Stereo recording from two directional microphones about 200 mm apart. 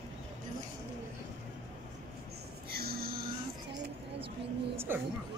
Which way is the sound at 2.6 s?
50° right (ahead or behind).